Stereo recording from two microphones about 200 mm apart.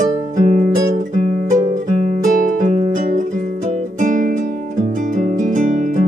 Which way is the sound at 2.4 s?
40° right (ahead or behind).